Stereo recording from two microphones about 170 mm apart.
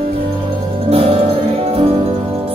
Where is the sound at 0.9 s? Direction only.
35° right (ahead or behind).